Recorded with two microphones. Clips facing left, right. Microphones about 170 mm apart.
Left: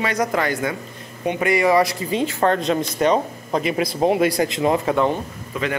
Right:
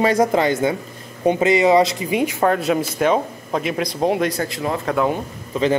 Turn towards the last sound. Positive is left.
turn(degrees=-30)  # may be behind; listen again after turning